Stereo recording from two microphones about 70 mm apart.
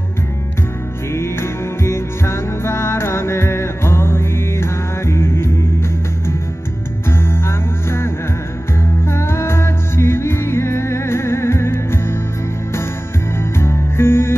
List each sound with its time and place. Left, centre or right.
1.1 s music: left
13.4 s music: left